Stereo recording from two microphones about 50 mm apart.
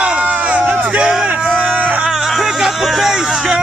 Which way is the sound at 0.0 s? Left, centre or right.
Right.